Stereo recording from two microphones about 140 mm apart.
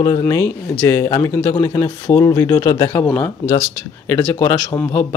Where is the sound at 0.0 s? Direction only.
25° left (ahead or behind).